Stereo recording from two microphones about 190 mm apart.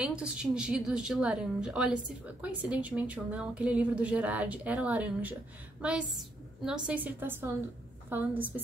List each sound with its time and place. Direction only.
0.0 s a woman's voice: 5° right (ahead or behind)